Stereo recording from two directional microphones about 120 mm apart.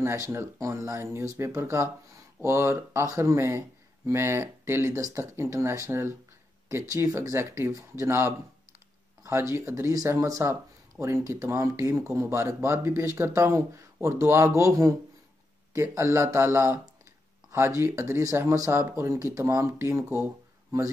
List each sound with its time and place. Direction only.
0.0 s speech: 20° right (ahead or behind)